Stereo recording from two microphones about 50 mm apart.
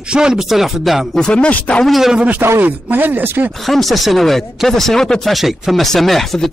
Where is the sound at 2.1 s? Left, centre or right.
Right.